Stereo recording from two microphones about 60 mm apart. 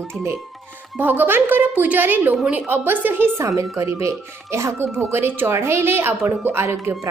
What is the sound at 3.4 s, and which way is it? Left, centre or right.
A woman's voice, right.